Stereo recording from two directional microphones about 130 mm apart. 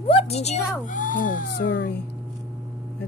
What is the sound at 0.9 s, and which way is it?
Speech, 90° left.